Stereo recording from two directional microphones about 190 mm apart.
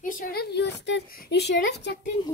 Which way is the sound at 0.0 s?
45° left (ahead or behind).